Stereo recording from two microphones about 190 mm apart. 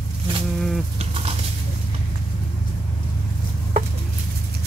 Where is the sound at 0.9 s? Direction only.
30° right (ahead or behind).